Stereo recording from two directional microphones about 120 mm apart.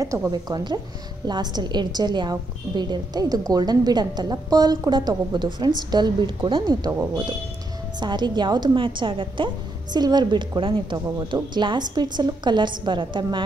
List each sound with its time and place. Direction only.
0.0 s a woman's voice: 30° right (ahead or behind)
8.0 s a woman's voice: 40° right (ahead or behind)